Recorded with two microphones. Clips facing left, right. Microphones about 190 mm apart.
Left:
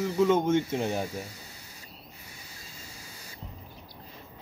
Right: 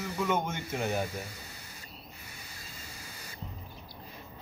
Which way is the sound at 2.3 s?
60° right (ahead or behind).